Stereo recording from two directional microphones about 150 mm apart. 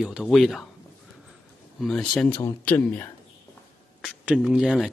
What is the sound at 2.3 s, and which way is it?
Speech, 10° left (ahead or behind).